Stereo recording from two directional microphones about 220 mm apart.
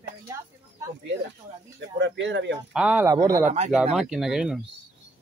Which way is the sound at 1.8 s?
55° right (ahead or behind).